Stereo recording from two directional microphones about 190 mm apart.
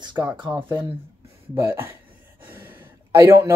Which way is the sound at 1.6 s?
10° right (ahead or behind).